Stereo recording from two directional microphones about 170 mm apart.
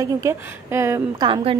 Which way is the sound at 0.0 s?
20° right (ahead or behind).